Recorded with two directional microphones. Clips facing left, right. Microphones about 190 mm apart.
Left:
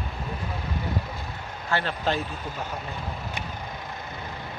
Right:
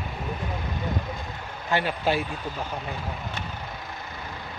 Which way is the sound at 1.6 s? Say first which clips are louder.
Right 2 dB; 15° right (ahead or behind).